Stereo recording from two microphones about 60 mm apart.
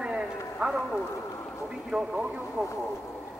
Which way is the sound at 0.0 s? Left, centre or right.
Centre.